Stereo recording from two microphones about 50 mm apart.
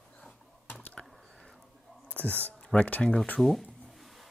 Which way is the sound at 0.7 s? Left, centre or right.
Left.